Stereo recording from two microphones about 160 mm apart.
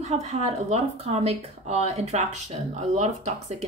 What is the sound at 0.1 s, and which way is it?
Speech, 40° right (ahead or behind).